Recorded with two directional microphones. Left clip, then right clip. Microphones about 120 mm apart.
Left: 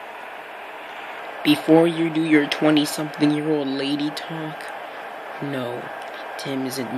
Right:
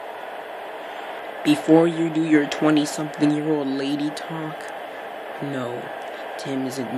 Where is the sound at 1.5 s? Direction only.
35° right (ahead or behind).